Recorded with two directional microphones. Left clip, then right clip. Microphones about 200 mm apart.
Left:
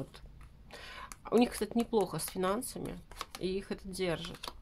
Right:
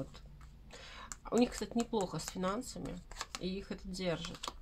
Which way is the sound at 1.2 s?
35° left (ahead or behind).